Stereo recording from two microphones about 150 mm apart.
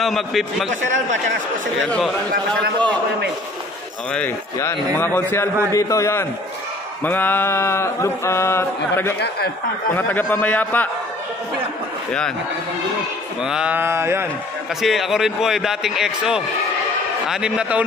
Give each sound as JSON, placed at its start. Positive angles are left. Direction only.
{"t": 0.0, "sound": "a man's voice", "side_deg": 0}
{"t": 1.8, "sound": "a man's voice", "side_deg": 5}
{"t": 5.0, "sound": "a sound", "side_deg": 15}
{"t": 5.7, "sound": "a man's voice", "side_deg": 20}
{"t": 7.0, "sound": "a sound", "side_deg": 10}
{"t": 13.4, "sound": "speech", "side_deg": -5}
{"t": 14.8, "sound": "a man's voice", "side_deg": 0}